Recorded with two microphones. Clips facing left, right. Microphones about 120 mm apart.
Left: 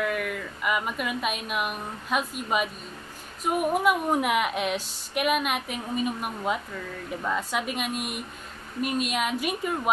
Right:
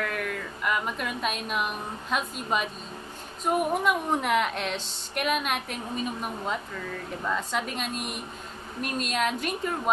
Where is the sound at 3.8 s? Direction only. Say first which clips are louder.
Left 2 dB; 5° left (ahead or behind).